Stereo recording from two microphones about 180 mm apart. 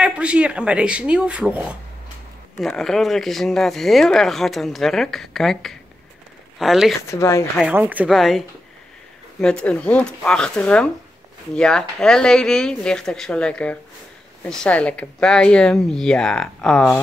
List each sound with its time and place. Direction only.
0.0 s speech: 5° right (ahead or behind)
7.1 s speech: 15° left (ahead or behind)
7.5 s speech: 10° right (ahead or behind)